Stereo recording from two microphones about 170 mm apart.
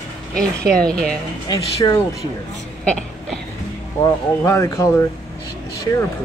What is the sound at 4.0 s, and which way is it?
Speech, 15° left (ahead or behind).